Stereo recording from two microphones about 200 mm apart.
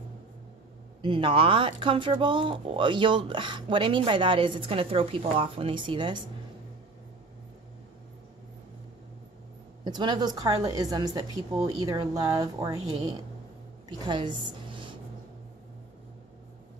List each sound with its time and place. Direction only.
1.0 s speech: 25° right (ahead or behind)
9.8 s speech: 20° right (ahead or behind)
13.8 s a sound: 20° right (ahead or behind)